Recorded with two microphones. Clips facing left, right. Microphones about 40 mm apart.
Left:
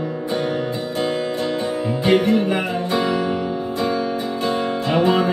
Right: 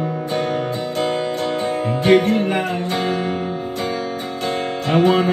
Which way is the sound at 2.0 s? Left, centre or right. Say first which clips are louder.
Right 2 dB; right.